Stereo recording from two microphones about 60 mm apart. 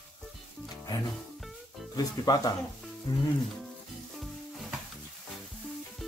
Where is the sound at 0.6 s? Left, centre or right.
Left.